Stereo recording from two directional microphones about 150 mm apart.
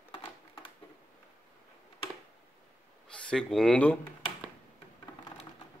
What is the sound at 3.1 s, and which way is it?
Speech, 5° left (ahead or behind).